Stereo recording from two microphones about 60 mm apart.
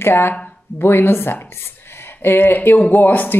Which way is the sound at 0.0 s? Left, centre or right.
Left.